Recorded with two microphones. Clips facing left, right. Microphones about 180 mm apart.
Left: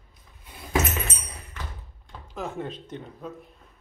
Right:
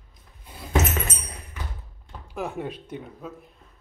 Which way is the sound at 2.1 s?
10° right (ahead or behind).